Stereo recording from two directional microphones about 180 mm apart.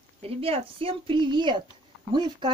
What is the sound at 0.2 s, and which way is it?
A woman's voice, 30° right (ahead or behind).